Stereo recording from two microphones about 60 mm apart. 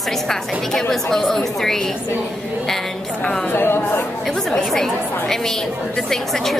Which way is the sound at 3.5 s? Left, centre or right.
Left.